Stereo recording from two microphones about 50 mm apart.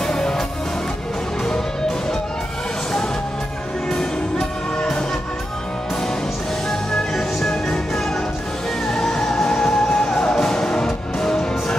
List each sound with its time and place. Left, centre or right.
0.0 s music: centre
3.9 s music: centre
6.7 s music: centre